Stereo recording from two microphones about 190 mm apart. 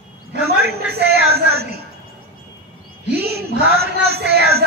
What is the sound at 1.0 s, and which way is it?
Speech, 55° right (ahead or behind).